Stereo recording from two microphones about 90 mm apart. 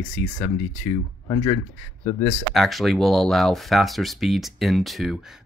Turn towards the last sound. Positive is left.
turn(degrees=0)  # may be behind; listen again after turning